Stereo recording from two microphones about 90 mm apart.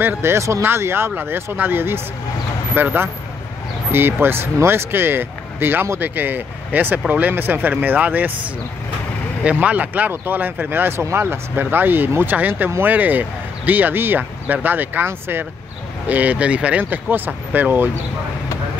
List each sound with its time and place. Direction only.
0.0 s speech: 30° right (ahead or behind)
9.4 s speech: 15° right (ahead or behind)